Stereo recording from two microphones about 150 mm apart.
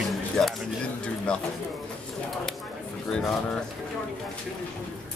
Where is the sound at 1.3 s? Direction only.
10° left (ahead or behind).